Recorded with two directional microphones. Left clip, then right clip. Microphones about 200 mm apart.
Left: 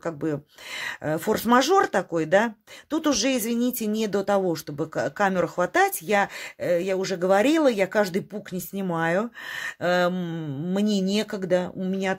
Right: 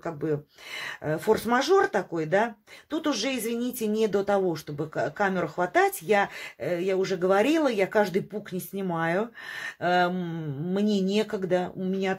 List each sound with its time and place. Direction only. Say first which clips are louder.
0.0 s speech: left 1 dB; 45° left (ahead or behind)